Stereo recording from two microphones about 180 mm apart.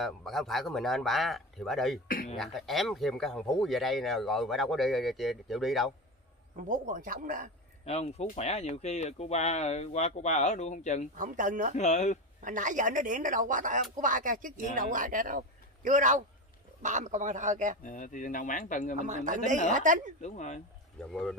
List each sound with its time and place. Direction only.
0.0 s speech: centre (ahead or behind)
2.0 s speech: 50° left (ahead or behind)
2.3 s speech: centre (ahead or behind)
6.5 s speech: 45° right (ahead or behind)
7.8 s speech: 35° left (ahead or behind)
11.1 s speech: 45° right (ahead or behind)
11.7 s speech: 40° left (ahead or behind)
12.4 s a man's voice: 45° right (ahead or behind)
17.8 s speech: 45° left (ahead or behind)
18.9 s speech: 45° right (ahead or behind)
20.2 s speech: 40° left (ahead or behind)
21.1 s speech: 5° left (ahead or behind)